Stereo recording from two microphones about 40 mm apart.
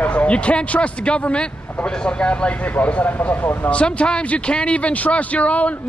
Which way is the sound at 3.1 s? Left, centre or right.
Left.